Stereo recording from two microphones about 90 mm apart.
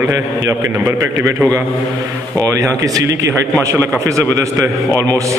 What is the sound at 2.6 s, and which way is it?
Speech, 40° right (ahead or behind).